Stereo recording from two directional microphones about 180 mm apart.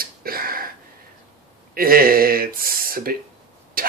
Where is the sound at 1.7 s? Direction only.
55° right (ahead or behind).